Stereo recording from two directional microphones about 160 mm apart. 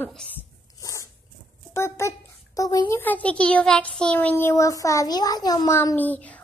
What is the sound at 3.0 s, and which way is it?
A child's voice, 10° left (ahead or behind).